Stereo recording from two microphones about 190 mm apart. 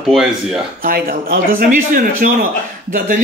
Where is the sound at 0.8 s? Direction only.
50° right (ahead or behind).